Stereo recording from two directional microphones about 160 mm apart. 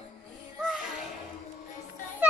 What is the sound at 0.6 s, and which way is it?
Music, centre (ahead or behind).